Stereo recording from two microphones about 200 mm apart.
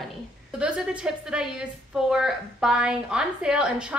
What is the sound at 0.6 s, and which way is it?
A woman's voice, 5° right (ahead or behind).